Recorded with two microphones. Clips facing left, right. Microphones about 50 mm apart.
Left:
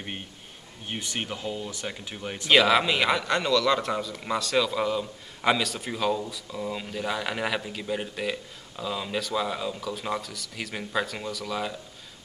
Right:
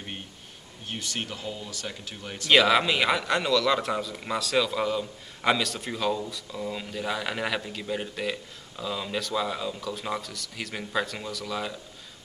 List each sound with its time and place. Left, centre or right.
0.8 s speech: centre
2.5 s a man's voice: centre